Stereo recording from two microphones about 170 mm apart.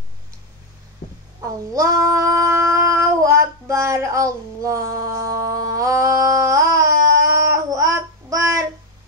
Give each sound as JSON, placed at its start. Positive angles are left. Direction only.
{"t": 1.4, "sound": "child singing", "side_deg": -20}